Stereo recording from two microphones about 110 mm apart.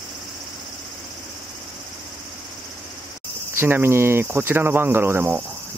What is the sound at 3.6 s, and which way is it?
Speech, 20° right (ahead or behind).